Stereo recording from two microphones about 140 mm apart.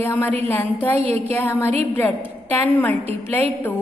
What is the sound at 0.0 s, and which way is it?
A woman's voice, 15° left (ahead or behind).